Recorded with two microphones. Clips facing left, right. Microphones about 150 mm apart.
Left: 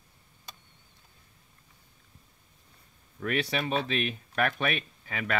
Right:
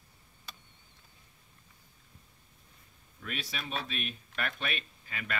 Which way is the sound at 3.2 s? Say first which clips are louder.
Left 11 dB; 65° left (ahead or behind).